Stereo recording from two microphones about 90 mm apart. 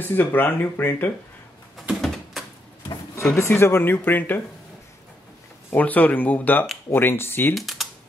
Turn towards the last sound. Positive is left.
turn(degrees=0)  # may be behind; listen again after turning